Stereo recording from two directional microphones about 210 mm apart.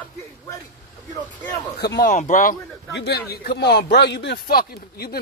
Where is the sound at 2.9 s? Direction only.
50° left (ahead or behind).